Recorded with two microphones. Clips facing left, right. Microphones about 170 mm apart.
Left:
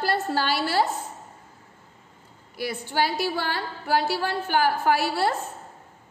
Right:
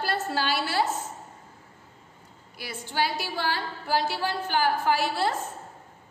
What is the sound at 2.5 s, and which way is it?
A woman's voice, 55° left (ahead or behind).